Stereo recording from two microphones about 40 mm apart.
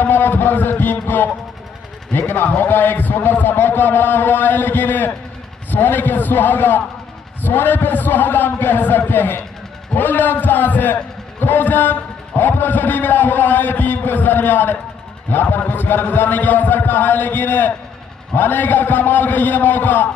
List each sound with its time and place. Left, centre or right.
0.0 s a man's voice: left